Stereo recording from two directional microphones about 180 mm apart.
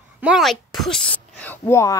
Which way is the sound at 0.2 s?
5° right (ahead or behind).